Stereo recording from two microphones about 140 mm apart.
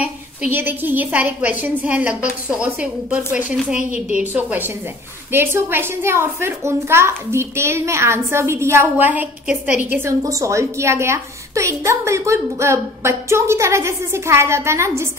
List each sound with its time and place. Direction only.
0.5 s a woman's voice: 15° right (ahead or behind)